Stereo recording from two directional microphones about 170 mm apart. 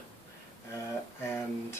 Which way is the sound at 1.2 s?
15° left (ahead or behind).